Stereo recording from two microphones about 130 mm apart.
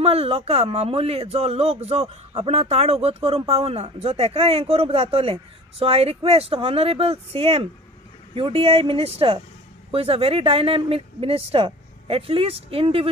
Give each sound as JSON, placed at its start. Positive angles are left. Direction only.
{"t": 0.0, "sound": "speech", "side_deg": -50}